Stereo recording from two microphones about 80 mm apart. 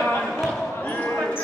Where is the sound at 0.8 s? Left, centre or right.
Centre.